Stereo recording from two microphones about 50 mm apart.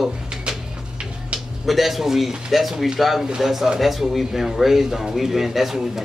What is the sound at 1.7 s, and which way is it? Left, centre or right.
Speech, centre.